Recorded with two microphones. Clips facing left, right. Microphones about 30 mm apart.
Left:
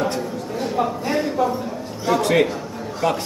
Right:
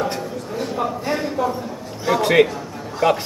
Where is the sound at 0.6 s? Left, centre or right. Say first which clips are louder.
Left 2 dB; centre.